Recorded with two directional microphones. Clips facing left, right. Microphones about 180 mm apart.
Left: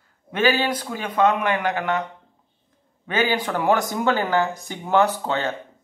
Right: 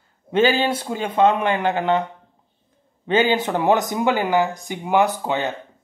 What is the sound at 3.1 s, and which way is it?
A man's voice, 25° right (ahead or behind).